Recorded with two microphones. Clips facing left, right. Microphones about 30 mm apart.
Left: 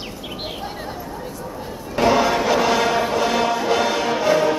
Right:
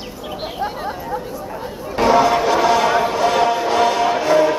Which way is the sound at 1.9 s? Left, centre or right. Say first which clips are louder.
Right 3 dB; centre.